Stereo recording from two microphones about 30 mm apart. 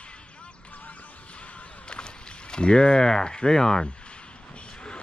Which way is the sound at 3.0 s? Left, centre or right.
Left.